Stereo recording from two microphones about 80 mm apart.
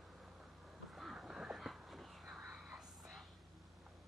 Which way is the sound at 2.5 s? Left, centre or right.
Centre.